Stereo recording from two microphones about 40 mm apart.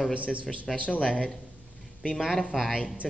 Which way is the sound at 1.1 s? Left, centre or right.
Centre.